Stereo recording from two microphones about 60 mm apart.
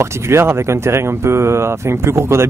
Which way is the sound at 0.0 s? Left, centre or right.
Right.